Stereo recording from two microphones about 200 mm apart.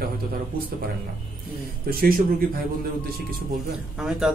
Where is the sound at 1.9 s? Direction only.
50° right (ahead or behind).